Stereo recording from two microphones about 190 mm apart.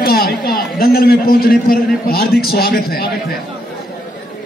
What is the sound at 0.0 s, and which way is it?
A man's voice, 50° left (ahead or behind).